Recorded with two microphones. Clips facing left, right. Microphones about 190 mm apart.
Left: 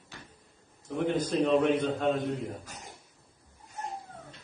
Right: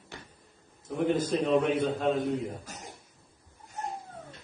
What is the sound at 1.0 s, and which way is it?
A man's voice, 5° right (ahead or behind).